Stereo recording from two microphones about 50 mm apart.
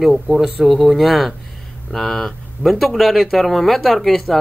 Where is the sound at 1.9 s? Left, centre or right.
Centre.